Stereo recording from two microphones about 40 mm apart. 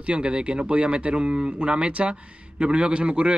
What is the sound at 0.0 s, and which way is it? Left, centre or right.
Speech, right.